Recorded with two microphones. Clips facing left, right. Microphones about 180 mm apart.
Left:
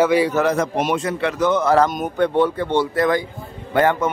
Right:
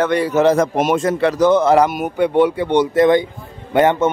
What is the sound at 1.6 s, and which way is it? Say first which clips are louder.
A man's voice: right 3 dB; 20° right (ahead or behind).